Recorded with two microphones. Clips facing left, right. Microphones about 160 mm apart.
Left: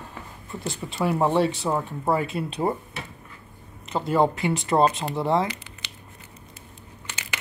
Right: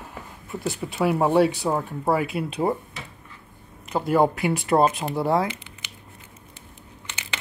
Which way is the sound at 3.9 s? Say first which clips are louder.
Right 2 dB; 10° right (ahead or behind).